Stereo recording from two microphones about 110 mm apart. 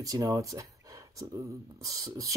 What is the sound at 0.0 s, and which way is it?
Speech, 30° right (ahead or behind).